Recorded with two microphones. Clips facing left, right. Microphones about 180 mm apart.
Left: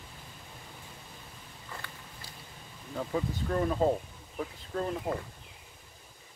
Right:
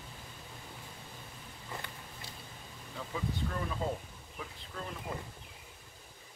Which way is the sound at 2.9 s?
45° left (ahead or behind).